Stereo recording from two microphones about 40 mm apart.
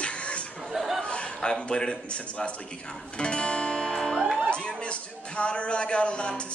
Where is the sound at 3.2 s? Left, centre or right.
Left.